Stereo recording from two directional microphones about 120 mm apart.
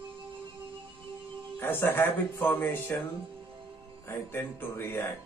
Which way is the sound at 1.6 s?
20° left (ahead or behind).